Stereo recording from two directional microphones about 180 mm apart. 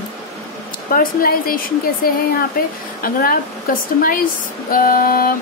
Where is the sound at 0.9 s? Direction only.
55° left (ahead or behind).